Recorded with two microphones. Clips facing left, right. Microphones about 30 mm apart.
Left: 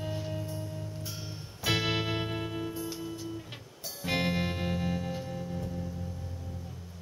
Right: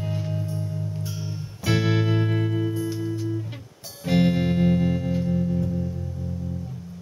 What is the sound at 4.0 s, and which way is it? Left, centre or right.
Music, centre.